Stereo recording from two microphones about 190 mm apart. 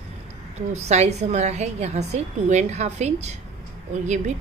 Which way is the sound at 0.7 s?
35° right (ahead or behind).